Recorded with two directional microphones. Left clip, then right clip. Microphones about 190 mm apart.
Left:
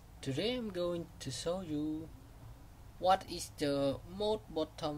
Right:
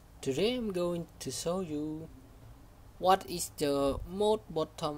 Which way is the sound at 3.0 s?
25° right (ahead or behind).